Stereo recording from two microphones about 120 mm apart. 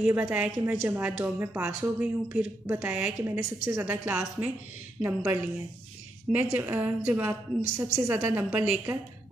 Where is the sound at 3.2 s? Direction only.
25° right (ahead or behind).